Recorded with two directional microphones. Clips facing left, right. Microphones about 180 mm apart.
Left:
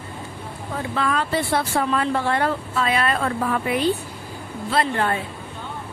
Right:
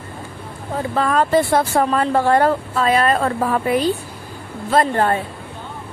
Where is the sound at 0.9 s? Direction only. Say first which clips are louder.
Right 7 dB; 45° right (ahead or behind).